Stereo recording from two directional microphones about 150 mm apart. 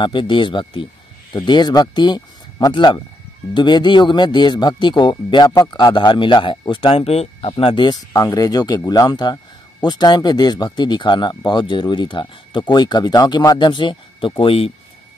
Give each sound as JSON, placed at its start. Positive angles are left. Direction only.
{"t": 0.0, "sound": "speech", "side_deg": 30}